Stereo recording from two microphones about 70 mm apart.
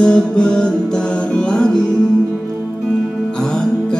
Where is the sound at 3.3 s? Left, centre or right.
Centre.